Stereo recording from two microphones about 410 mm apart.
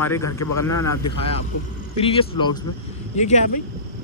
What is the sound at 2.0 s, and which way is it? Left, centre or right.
Speech, centre.